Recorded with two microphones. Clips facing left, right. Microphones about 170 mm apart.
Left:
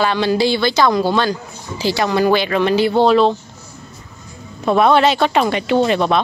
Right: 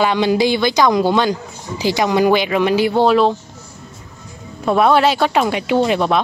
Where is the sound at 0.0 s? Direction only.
15° right (ahead or behind).